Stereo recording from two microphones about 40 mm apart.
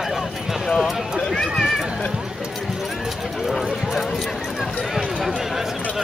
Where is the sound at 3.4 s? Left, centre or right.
Centre.